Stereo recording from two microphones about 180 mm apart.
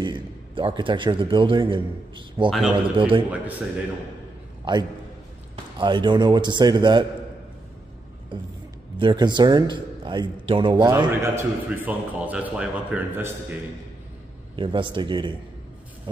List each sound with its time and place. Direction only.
0.0 s a man's voice: 25° right (ahead or behind)
4.7 s a man's voice: 25° right (ahead or behind)
8.3 s a man's voice: 30° right (ahead or behind)
11.3 s speech: 10° right (ahead or behind)
14.5 s a man's voice: 30° right (ahead or behind)